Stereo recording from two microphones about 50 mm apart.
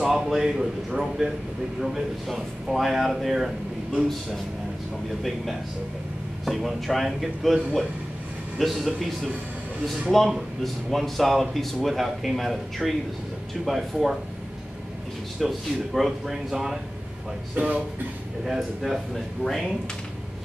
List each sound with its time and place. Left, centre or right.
0.1 s a man's voice: centre
10.6 s speech: centre
15.4 s speech: centre
17.6 s speech: right
18.4 s speech: centre